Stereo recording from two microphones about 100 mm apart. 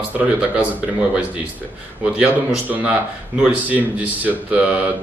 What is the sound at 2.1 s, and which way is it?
Speech, 10° right (ahead or behind).